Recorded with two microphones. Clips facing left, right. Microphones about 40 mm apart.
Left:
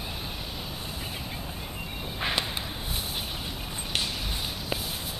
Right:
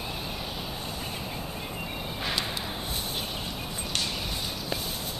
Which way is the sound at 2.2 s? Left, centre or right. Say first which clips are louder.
Left 2 dB; left.